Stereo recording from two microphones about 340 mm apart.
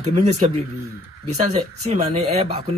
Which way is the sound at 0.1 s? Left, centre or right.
Centre.